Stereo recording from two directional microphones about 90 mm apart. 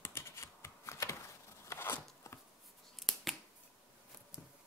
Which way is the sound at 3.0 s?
Centre (ahead or behind).